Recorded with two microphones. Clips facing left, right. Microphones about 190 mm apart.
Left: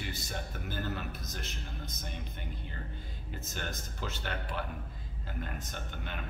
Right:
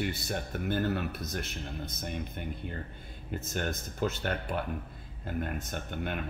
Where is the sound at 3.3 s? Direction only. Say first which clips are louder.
Right 7 dB; 55° right (ahead or behind).